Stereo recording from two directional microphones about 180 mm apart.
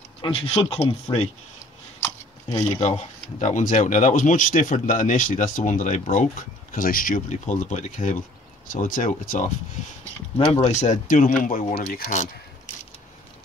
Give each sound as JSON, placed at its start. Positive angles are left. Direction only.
{"t": 0.2, "sound": "speech", "side_deg": 30}
{"t": 3.0, "sound": "speech", "side_deg": 40}
{"t": 10.3, "sound": "speech", "side_deg": 25}
{"t": 10.7, "sound": "speech", "side_deg": 40}